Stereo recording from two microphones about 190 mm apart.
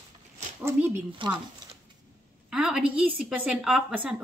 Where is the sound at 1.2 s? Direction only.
25° right (ahead or behind).